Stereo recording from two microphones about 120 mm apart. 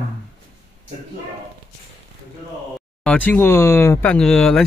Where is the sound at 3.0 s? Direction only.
10° left (ahead or behind).